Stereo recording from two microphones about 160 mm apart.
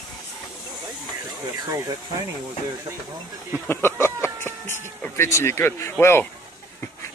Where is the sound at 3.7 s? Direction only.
15° left (ahead or behind).